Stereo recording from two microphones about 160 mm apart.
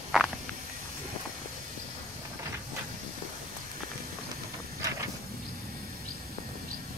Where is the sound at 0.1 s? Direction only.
Centre (ahead or behind).